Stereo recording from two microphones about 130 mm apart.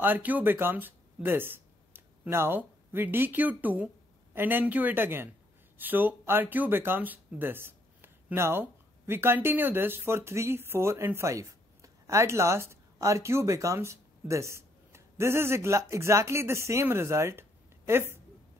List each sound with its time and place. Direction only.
0.0 s speech: 15° right (ahead or behind)